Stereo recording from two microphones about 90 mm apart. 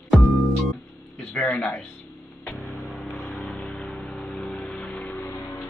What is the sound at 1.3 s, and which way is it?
Speech, 10° left (ahead or behind).